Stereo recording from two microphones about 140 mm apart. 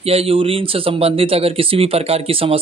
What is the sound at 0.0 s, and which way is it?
Speech, 45° right (ahead or behind).